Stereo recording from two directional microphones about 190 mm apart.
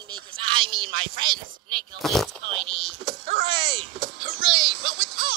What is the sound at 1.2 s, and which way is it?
Speech, 25° right (ahead or behind).